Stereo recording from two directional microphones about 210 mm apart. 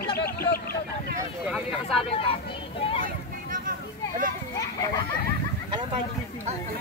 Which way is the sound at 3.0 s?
40° right (ahead or behind).